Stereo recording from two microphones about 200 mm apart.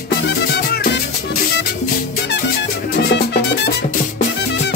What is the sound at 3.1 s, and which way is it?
Music, 60° left (ahead or behind).